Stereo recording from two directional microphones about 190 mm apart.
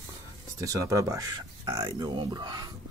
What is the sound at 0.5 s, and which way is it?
Speech, 15° right (ahead or behind).